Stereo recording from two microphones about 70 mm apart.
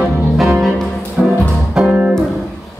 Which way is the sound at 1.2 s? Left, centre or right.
Centre.